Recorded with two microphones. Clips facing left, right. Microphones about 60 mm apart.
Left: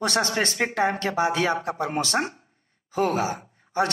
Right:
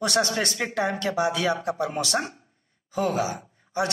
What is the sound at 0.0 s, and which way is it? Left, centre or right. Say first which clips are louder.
Speech: even; left.